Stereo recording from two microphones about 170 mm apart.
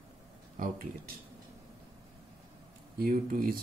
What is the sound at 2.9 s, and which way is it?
Speech, 55° right (ahead or behind).